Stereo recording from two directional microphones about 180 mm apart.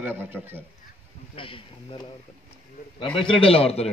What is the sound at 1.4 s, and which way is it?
Speech, 30° left (ahead or behind).